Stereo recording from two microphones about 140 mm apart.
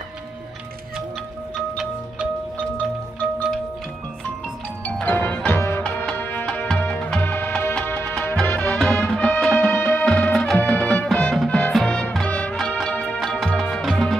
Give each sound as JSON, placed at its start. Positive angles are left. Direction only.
{"t": 4.8, "sound": "music", "side_deg": 10}
{"t": 10.0, "sound": "music", "side_deg": 5}